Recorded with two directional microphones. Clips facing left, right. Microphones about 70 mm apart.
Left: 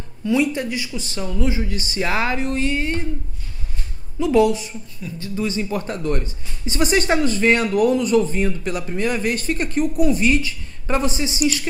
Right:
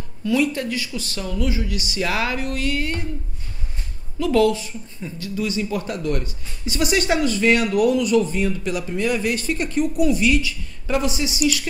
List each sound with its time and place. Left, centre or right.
0.3 s speech: left
4.2 s speech: centre
5.2 s speech: left